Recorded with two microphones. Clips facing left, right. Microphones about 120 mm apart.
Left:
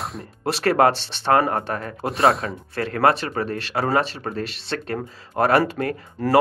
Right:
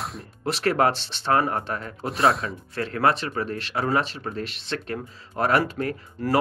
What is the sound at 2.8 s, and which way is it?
Speech, 55° left (ahead or behind).